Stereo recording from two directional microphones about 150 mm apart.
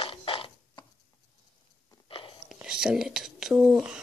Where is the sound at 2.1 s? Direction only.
35° left (ahead or behind).